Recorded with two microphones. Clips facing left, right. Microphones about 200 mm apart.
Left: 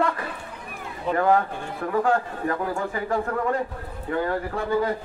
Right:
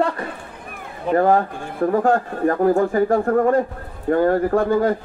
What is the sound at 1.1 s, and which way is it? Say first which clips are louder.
Speech: right 5 dB; 40° right (ahead or behind).